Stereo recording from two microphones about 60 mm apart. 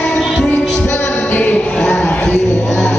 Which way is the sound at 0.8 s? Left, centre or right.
Left.